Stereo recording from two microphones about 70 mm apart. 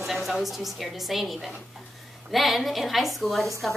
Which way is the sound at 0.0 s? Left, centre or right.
Centre.